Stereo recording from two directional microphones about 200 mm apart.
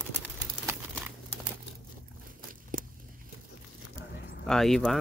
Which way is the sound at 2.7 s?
40° right (ahead or behind).